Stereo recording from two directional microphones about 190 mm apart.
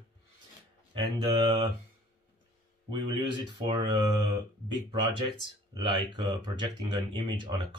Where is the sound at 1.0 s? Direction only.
25° right (ahead or behind).